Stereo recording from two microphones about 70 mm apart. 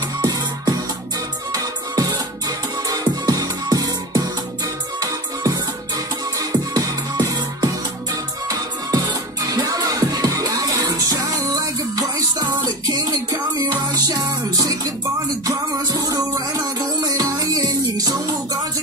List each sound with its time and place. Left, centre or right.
0.2 s music: right
13.7 s music: right